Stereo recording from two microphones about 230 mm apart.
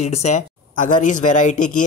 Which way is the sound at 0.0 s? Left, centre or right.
Left.